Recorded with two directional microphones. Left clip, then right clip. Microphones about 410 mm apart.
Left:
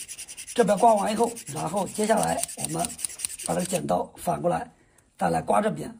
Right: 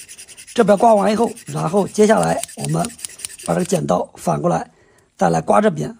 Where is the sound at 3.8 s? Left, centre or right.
Centre.